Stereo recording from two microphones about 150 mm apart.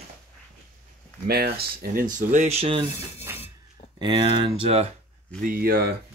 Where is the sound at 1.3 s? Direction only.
90° right; by 2.8 s 40° right (ahead or behind).